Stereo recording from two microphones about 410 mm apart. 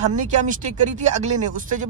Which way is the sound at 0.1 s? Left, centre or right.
Centre.